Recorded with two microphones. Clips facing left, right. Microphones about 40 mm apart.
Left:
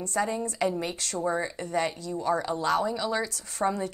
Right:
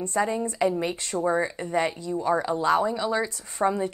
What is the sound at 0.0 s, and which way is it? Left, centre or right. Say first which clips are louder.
Speech: right 3 dB; right.